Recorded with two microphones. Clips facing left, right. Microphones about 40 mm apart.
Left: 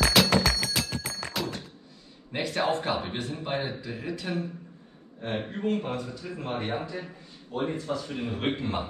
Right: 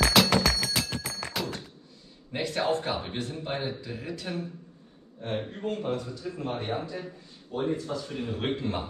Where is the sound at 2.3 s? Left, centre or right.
Centre.